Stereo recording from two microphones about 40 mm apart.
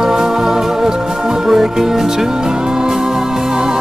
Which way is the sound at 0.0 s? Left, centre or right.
Centre.